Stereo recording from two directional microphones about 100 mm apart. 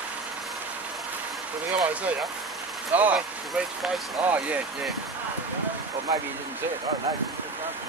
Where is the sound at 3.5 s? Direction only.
Centre (ahead or behind).